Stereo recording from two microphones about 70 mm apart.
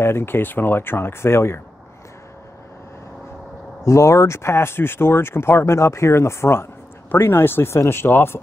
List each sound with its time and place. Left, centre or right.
0.0 s speech: left
3.8 s speech: left